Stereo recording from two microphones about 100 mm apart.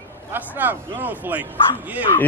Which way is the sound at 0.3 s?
20° right (ahead or behind).